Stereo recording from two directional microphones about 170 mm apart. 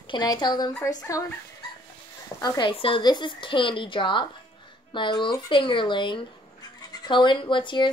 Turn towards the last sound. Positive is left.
turn(degrees=30)  # may be behind; listen again after turning